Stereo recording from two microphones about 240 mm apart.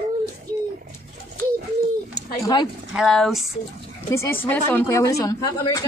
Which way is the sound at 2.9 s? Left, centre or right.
Centre.